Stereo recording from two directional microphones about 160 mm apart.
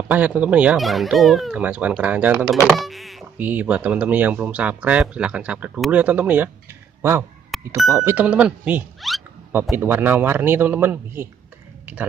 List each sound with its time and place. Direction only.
0.1 s speech: 10° right (ahead or behind)
3.3 s speech: 10° right (ahead or behind)
7.5 s speech: centre (ahead or behind)
7.9 s speech: 15° right (ahead or behind)